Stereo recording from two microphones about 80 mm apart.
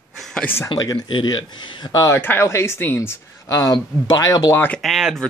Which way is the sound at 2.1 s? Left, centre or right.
Left.